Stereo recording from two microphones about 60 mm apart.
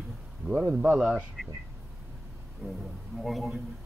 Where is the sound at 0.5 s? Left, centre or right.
Centre.